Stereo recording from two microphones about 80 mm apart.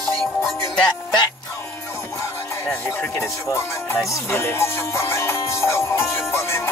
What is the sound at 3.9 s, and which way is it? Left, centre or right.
Music, left.